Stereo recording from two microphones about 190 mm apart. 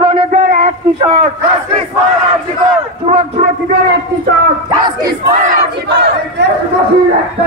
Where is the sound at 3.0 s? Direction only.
35° right (ahead or behind).